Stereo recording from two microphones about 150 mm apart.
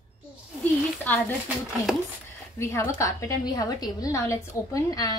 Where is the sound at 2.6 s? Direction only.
15° left (ahead or behind).